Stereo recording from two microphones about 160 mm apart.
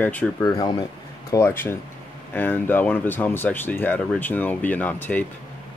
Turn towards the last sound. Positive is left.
turn(degrees=10)  # may be behind; listen again after turning